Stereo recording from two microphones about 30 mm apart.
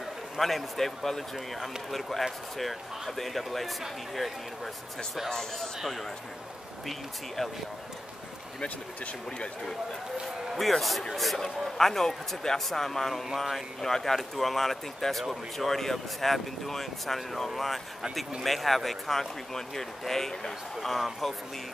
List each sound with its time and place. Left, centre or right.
0.4 s speech: centre
8.6 s speech: left
10.2 s speech: centre